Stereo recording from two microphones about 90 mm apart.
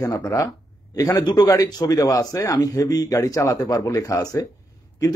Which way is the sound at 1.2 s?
55° left (ahead or behind).